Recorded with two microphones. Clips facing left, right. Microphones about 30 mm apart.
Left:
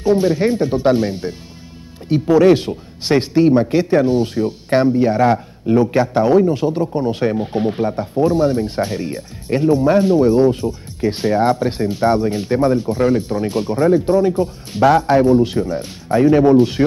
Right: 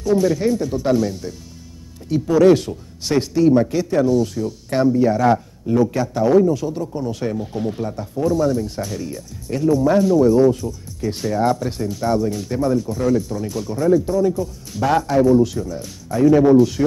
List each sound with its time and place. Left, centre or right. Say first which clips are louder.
0.0 s speech: left 2 dB; left